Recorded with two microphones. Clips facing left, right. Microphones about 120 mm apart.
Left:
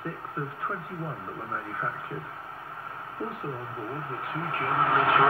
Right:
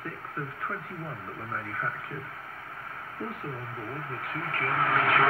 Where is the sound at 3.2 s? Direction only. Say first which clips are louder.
Left 2 dB; 20° left (ahead or behind).